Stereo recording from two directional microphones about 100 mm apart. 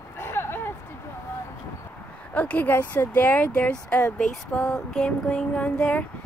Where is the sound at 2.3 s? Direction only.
15° left (ahead or behind).